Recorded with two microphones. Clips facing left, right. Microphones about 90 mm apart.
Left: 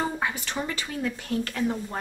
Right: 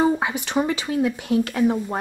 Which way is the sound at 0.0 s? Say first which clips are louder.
Right 8 dB; 15° right (ahead or behind).